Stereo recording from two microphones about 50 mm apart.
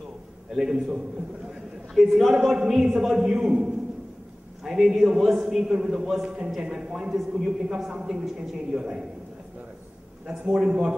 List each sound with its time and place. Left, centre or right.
0.6 s a man's voice: centre
7.2 s a man's voice: centre
7.6 s a man's voice: centre
10.5 s a man's voice: centre